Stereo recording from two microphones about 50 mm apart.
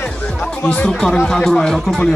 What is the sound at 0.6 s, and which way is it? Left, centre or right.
Speech, left.